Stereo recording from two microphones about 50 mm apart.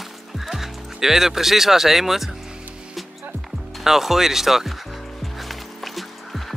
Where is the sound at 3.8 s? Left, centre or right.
Centre.